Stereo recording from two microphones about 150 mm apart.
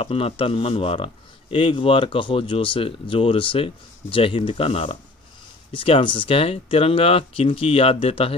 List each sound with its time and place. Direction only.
0.0 s speech: 35° left (ahead or behind)